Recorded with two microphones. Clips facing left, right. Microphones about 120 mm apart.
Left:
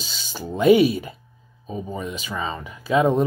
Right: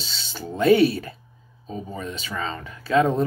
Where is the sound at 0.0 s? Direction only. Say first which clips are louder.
Left 1 dB; 10° left (ahead or behind).